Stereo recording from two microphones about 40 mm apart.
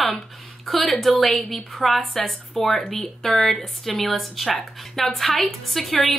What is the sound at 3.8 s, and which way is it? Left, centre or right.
Speech, centre.